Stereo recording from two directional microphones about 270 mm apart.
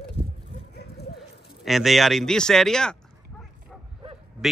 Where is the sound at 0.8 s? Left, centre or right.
Left.